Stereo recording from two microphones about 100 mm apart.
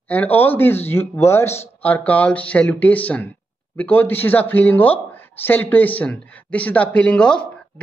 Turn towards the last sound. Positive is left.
turn(degrees=10)  # may be behind; listen again after turning